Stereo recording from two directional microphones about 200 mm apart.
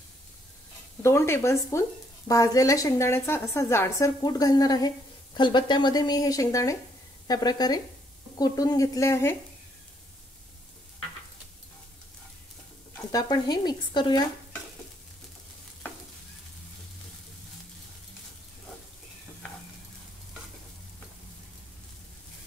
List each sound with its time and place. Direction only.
1.0 s a woman's voice: 15° left (ahead or behind)
13.1 s speech: 20° left (ahead or behind)